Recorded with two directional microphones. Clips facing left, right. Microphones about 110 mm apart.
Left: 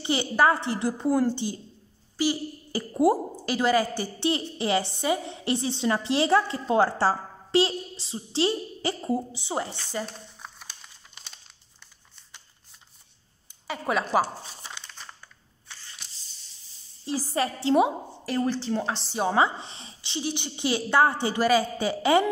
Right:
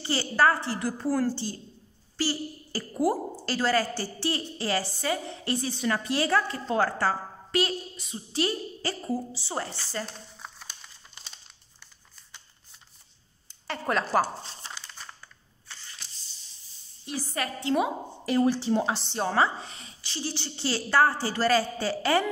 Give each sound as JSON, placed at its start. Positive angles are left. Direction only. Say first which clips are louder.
{"t": 0.0, "sound": "a woman's voice", "louder": "left 1 dB", "side_deg": 20}
{"t": 10.0, "sound": "crumpling", "louder": "left 1 dB", "side_deg": 0}
{"t": 13.7, "sound": "a woman's voice", "louder": "left 1 dB", "side_deg": 5}
{"t": 14.7, "sound": "crumpling", "louder": "even", "side_deg": -5}
{"t": 17.0, "sound": "a woman's voice", "louder": "left 5 dB", "side_deg": 35}
{"t": 18.2, "sound": "speech", "louder": "right 3 dB", "side_deg": -5}
{"t": 18.9, "sound": "a woman's voice", "louder": "left 2 dB", "side_deg": 5}